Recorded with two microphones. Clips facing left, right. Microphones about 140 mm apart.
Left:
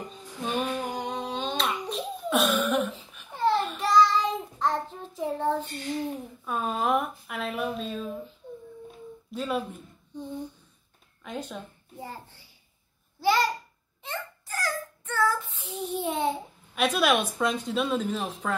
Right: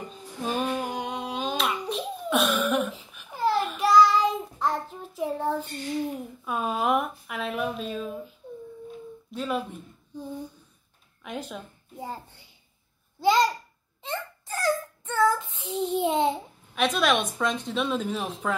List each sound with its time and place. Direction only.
0.1 s a sound: 5° right (ahead or behind)
9.3 s a woman's voice: centre (ahead or behind)
11.2 s a sound: 5° right (ahead or behind)
12.1 s a child's voice: 20° right (ahead or behind)
13.2 s babbling: 20° right (ahead or behind)
14.0 s child singing: 25° right (ahead or behind)
16.7 s a woman's voice: 5° left (ahead or behind)